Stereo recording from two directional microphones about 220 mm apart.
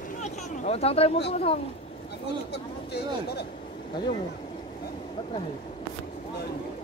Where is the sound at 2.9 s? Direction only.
45° left (ahead or behind).